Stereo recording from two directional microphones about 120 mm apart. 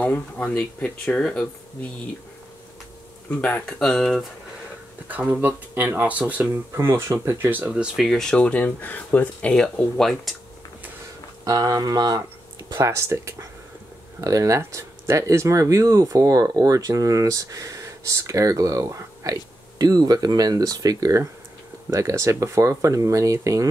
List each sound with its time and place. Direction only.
0.0 s speech: 10° left (ahead or behind)
3.3 s speech: 10° left (ahead or behind)
5.0 s speech: 15° right (ahead or behind); by 10.3 s 5° left (ahead or behind)
11.4 s speech: 30° right (ahead or behind)